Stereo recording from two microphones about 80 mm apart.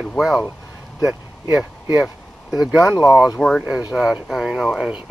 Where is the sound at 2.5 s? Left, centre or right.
Centre.